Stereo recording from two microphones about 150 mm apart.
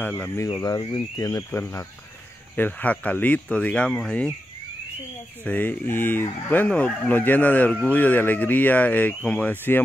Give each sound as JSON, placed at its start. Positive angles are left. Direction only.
{"t": 0.5, "sound": "speech", "side_deg": 25}
{"t": 2.5, "sound": "fowl", "side_deg": 10}
{"t": 5.4, "sound": "fowl", "side_deg": 10}